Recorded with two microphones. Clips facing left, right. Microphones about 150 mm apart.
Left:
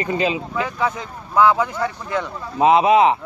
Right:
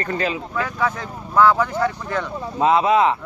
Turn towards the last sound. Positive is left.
turn(degrees=20)  # may be behind; listen again after turning